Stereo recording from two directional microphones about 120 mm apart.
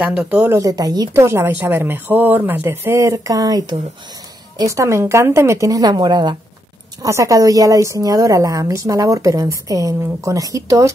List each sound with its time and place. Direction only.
0.0 s speech: 10° right (ahead or behind)
0.4 s speech: 25° right (ahead or behind)
1.1 s a woman's voice: 20° right (ahead or behind)
7.0 s a woman's voice: 25° right (ahead or behind)